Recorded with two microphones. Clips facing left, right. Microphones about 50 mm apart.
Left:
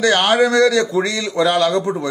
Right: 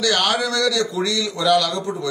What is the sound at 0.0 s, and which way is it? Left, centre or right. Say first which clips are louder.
Speech: left 6 dB; left.